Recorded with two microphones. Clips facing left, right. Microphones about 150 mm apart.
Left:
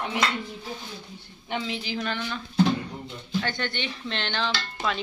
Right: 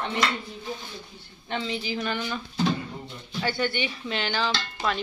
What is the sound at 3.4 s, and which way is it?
Speech, 5° right (ahead or behind).